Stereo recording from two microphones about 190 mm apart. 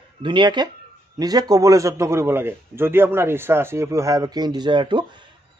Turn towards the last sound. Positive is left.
turn(degrees=-25)  # may be behind; listen again after turning